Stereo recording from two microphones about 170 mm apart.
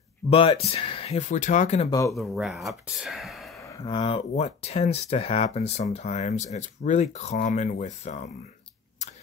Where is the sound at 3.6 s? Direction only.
20° left (ahead or behind).